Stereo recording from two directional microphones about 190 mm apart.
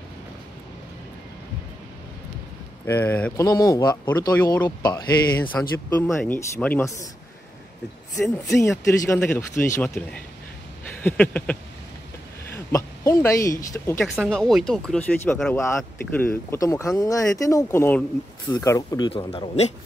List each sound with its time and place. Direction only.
2.9 s speech: 10° left (ahead or behind)
3.4 s speech: 20° left (ahead or behind)
8.5 s speech: 15° left (ahead or behind)
12.5 s speech: 15° left (ahead or behind)
14.0 s speech: centre (ahead or behind)
15.5 s speech: 15° left (ahead or behind); by 19.7 s 35° left (ahead or behind)